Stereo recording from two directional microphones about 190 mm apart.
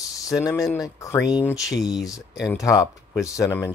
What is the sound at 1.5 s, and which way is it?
Speech, centre (ahead or behind).